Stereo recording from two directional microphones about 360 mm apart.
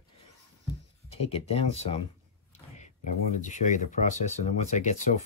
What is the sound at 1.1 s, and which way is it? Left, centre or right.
Speech, centre.